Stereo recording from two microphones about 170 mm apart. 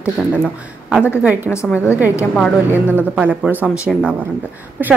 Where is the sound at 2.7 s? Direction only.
10° right (ahead or behind).